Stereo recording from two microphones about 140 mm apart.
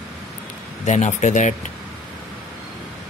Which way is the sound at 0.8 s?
55° left (ahead or behind).